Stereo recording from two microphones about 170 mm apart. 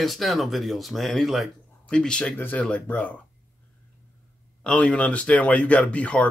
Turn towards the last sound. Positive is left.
turn(degrees=10)  # may be behind; listen again after turning